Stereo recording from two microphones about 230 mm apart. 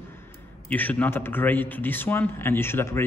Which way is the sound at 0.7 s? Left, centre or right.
Centre.